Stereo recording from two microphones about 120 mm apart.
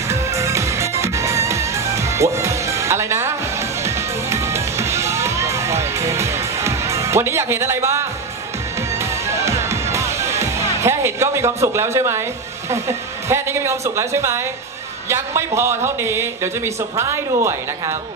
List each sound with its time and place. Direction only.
0.1 s music: 25° right (ahead or behind)
9.3 s music: 25° right (ahead or behind)
12.7 s a man's voice: 25° right (ahead or behind)